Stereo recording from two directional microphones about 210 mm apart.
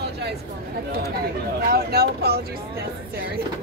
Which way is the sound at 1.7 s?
50° right (ahead or behind).